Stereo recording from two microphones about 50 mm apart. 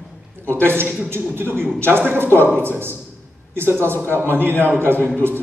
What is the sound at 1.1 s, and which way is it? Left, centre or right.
A man's voice, right.